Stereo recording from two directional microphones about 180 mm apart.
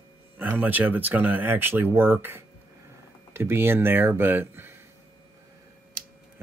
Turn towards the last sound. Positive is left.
turn(degrees=-50)  # may be behind; listen again after turning